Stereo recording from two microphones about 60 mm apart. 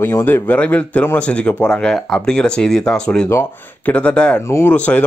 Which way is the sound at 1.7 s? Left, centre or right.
Centre.